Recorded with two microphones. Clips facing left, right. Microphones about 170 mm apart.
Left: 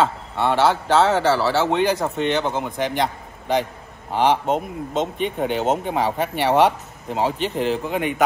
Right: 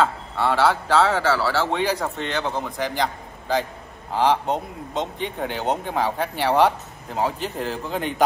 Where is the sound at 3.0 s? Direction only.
20° left (ahead or behind).